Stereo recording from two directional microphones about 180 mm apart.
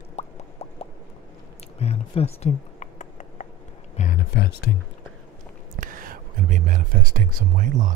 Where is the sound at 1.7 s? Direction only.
35° left (ahead or behind).